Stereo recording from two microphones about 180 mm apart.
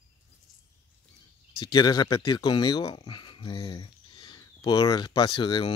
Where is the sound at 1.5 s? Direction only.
25° left (ahead or behind).